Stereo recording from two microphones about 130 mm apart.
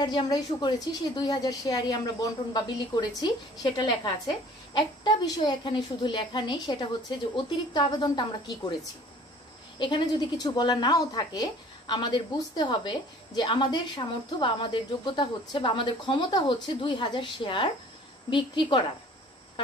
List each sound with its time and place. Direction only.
0.0 s a woman's voice: 35° left (ahead or behind)
9.8 s a woman's voice: 40° left (ahead or behind)